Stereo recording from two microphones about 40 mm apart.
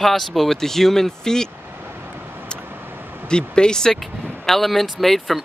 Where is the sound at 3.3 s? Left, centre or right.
Left.